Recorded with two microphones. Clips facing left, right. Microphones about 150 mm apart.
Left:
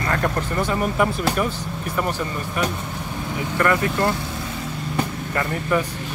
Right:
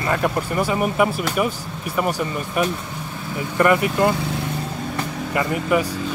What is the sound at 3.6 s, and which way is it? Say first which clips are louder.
Speech: right 4 dB; 15° right (ahead or behind).